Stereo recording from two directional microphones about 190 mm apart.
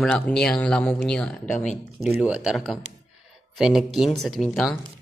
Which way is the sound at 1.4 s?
40° left (ahead or behind).